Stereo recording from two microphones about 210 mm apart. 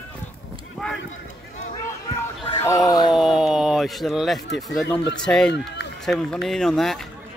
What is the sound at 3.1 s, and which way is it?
Speech, centre (ahead or behind).